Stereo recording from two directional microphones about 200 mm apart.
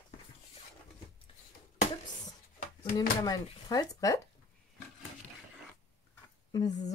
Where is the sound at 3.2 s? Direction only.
20° left (ahead or behind).